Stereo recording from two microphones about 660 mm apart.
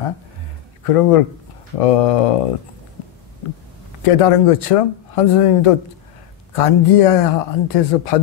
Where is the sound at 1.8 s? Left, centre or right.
Left.